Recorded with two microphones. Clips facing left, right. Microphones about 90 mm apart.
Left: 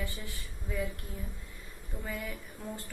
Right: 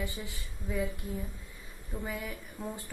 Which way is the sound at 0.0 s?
20° right (ahead or behind).